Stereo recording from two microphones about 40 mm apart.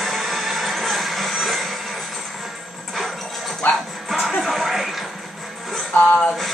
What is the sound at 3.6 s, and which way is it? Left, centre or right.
Music, left.